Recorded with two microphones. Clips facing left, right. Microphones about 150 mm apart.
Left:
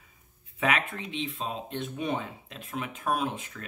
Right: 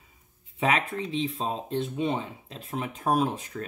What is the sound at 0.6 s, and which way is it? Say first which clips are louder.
Speech: right 3 dB; 30° right (ahead or behind).